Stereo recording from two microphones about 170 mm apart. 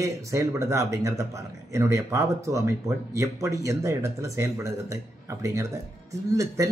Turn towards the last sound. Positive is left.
turn(degrees=-20)  # may be behind; listen again after turning